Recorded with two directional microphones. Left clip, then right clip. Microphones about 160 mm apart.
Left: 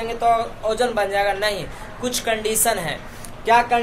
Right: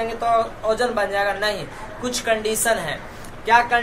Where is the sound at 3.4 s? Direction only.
40° left (ahead or behind).